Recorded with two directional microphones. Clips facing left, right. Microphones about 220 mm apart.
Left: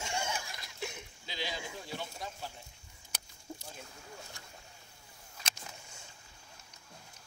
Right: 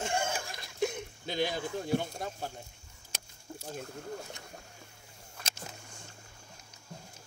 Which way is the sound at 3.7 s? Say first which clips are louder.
Right 10 dB; 50° right (ahead or behind).